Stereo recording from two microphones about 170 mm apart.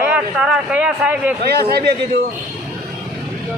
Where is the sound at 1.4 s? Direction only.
65° right (ahead or behind).